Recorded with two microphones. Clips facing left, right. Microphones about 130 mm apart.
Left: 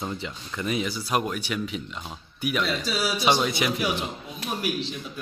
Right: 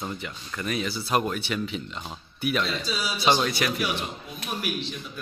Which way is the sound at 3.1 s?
10° left (ahead or behind).